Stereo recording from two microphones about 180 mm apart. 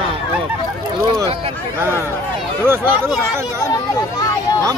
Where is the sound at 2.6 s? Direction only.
15° right (ahead or behind).